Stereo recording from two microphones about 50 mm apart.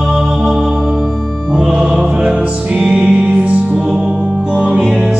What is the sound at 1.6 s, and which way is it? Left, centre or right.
Music, centre.